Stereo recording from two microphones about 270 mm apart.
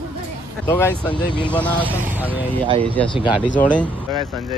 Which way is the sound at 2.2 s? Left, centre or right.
Centre.